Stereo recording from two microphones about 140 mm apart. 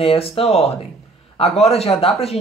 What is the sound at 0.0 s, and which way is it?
A man's voice, 45° left (ahead or behind).